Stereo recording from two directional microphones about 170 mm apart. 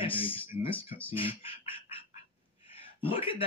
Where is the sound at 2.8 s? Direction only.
35° left (ahead or behind).